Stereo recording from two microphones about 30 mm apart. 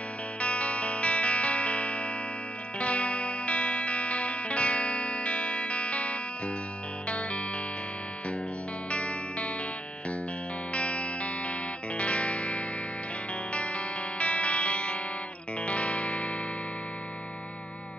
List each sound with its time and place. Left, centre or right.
0.4 s music: left
8.9 s music: left
10.7 s music: left